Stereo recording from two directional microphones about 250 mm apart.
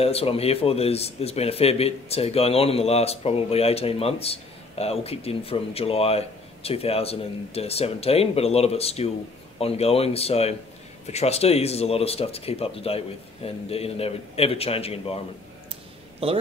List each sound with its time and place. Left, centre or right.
0.0 s speech: left
16.2 s a man's voice: right